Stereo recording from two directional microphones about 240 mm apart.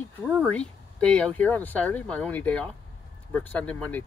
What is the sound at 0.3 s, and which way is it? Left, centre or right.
Speech, centre.